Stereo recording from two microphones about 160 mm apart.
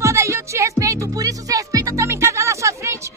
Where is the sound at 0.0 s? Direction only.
20° right (ahead or behind).